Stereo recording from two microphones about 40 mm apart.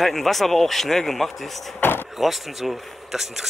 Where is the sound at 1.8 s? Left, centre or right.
Left.